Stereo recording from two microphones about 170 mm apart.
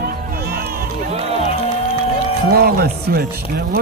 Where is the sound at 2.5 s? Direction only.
65° right (ahead or behind).